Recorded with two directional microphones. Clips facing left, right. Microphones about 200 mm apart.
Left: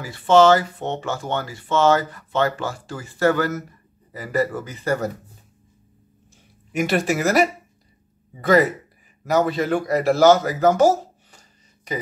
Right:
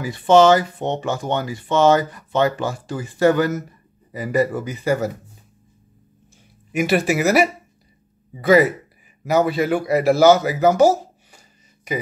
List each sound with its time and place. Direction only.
0.0 s speech: 15° right (ahead or behind)
6.7 s speech: 5° right (ahead or behind)